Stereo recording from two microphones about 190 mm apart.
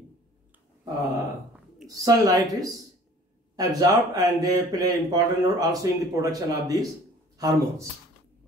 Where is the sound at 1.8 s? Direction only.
20° right (ahead or behind).